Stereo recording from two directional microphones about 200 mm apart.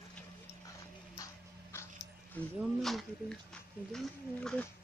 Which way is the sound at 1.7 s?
10° left (ahead or behind).